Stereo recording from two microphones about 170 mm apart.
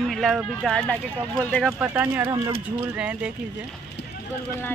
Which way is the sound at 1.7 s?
10° right (ahead or behind).